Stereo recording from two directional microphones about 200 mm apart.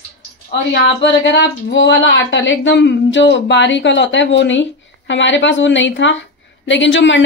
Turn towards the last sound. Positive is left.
turn(degrees=65)  # may be behind; listen again after turning